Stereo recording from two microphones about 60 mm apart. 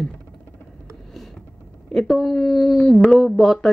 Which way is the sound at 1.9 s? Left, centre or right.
Centre.